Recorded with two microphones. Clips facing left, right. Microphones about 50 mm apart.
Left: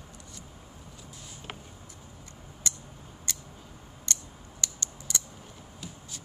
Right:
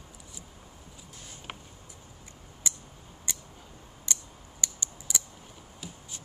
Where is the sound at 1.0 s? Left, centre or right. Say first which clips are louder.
Left 1 dB; right.